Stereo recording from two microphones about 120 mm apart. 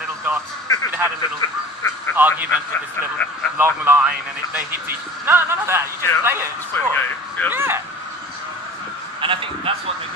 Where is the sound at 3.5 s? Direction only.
15° right (ahead or behind).